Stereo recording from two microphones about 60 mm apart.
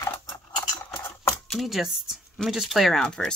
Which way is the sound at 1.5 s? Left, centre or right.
Centre.